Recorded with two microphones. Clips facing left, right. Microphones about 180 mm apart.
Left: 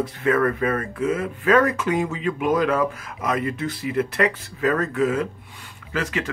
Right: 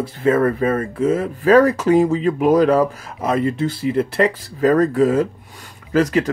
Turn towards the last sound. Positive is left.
turn(degrees=-40)  # may be behind; listen again after turning